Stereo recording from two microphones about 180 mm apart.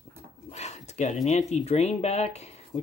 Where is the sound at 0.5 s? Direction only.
35° left (ahead or behind).